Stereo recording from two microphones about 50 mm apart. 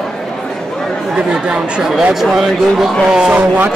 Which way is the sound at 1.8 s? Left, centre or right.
Centre.